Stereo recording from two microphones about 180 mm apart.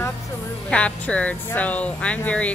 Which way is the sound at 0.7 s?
5° left (ahead or behind).